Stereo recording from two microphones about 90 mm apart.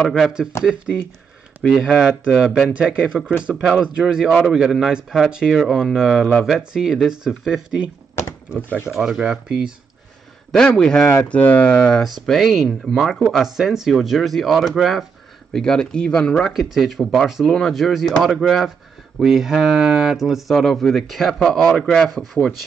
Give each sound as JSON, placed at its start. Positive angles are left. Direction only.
{"t": 0.0, "sound": "speech", "side_deg": 5}
{"t": 1.6, "sound": "speech", "side_deg": 0}
{"t": 8.9, "sound": "speech", "side_deg": 0}
{"t": 10.8, "sound": "speech", "side_deg": 5}
{"t": 12.3, "sound": "speech", "side_deg": 0}
{"t": 15.5, "sound": "speech", "side_deg": 10}
{"t": 16.7, "sound": "speech", "side_deg": -5}